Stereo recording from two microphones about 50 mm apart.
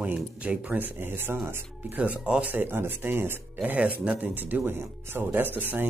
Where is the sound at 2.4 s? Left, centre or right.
Right.